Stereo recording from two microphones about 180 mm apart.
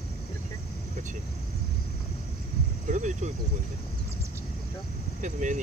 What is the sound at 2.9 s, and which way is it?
Speech, 40° right (ahead or behind).